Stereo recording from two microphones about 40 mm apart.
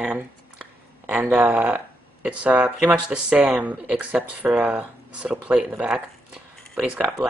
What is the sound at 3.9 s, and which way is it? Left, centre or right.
Speech, right.